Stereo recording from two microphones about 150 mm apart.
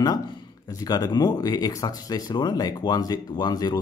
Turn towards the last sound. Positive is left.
turn(degrees=25)  # may be behind; listen again after turning